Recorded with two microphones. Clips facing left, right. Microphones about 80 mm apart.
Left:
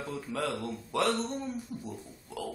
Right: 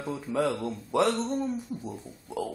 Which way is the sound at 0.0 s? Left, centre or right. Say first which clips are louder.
Right 6 dB; centre.